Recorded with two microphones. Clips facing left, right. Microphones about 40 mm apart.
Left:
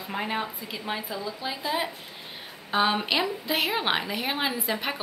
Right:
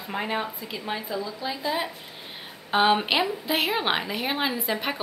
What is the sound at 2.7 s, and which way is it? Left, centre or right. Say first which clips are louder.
A woman's voice: right 3 dB; centre.